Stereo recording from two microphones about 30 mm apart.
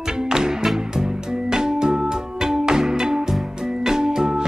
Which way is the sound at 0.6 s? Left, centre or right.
Centre.